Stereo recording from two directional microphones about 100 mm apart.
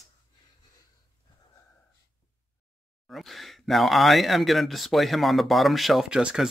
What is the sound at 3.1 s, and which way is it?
Speech, centre (ahead or behind).